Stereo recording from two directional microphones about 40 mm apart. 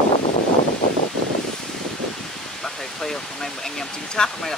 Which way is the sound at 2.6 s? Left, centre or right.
Centre.